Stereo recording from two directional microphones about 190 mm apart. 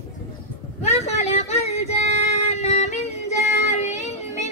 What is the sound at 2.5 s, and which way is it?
Child singing, 35° left (ahead or behind).